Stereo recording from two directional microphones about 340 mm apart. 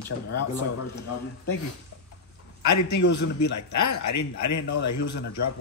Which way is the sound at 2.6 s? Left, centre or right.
Left.